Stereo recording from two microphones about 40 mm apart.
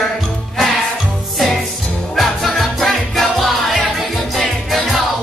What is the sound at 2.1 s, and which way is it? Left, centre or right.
Music, centre.